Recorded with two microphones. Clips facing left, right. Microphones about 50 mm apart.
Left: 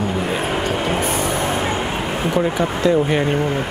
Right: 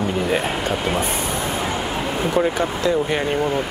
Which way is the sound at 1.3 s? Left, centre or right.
Left.